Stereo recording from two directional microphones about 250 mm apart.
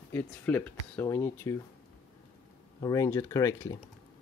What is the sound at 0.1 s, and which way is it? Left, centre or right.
Speech, centre.